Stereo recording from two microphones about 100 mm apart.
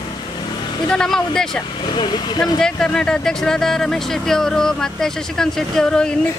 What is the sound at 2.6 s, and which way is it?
Speech, 5° left (ahead or behind).